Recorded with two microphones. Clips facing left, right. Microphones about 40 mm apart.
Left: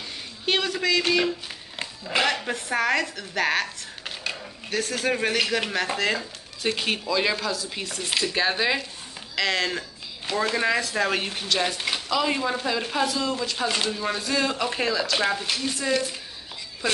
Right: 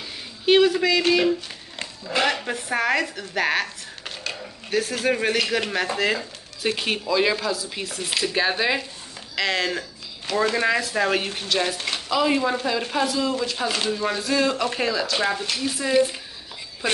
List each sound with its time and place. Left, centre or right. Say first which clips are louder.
0.5 s speech: right 6 dB; centre
1.8 s a sound: even; centre
2.2 s speech: right 1 dB; centre
15.9 s a woman's voice: right 7 dB; centre